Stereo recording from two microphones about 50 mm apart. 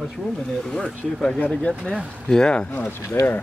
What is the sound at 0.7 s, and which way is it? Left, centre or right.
Speech, centre.